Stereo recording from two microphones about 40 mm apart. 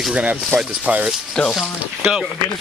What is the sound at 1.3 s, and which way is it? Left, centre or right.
Speech, centre.